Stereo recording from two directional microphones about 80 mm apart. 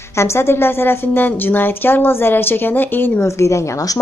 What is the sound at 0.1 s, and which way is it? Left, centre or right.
A woman's voice, left.